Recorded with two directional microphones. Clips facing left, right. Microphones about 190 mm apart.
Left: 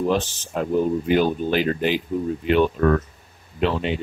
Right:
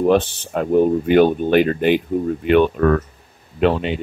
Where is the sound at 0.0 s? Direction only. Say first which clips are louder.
Right 6 dB; 60° right (ahead or behind).